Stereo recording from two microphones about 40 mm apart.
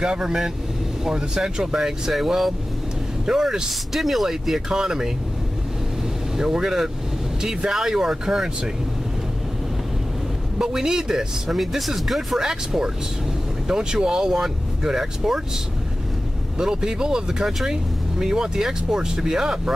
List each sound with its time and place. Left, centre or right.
0.0 s speech: centre
4.6 s speech: centre
6.3 s speech: centre
10.6 s speech: centre
11.5 s speech: centre
12.4 s speech: centre
16.5 s speech: centre